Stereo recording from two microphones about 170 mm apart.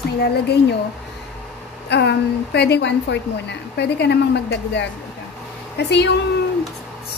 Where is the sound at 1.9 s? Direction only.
80° left.